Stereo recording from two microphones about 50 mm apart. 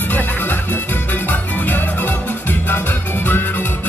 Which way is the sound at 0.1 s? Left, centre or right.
Left.